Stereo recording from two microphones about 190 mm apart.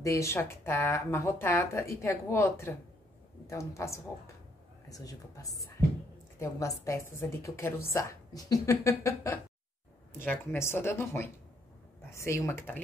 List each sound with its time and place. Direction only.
0.0 s speech: 15° left (ahead or behind)